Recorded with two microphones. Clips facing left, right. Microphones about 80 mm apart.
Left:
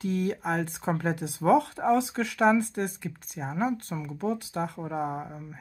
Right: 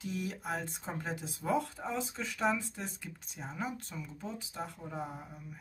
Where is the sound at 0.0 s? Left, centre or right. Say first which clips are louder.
Left 10 dB; left.